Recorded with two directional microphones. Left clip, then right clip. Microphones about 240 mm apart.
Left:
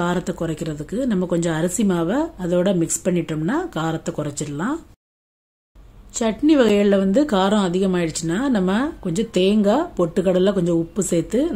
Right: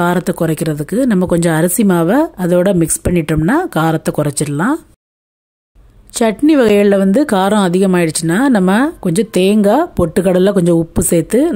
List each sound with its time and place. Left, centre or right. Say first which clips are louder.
0.0 s speech: right 9 dB; right
6.1 s speech: right 6 dB; right